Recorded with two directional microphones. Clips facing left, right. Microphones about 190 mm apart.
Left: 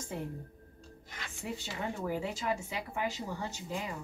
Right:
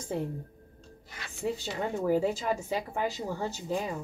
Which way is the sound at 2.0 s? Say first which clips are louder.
Right 8 dB; 40° right (ahead or behind).